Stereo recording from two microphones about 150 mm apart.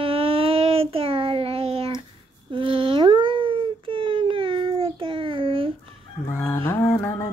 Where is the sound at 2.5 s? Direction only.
35° right (ahead or behind).